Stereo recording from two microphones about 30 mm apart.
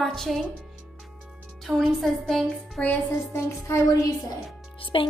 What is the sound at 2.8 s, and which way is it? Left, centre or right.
Music, left.